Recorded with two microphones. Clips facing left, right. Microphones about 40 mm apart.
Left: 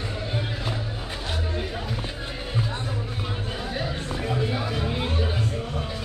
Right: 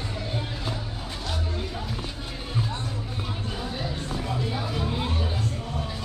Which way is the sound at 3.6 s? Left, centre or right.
Left.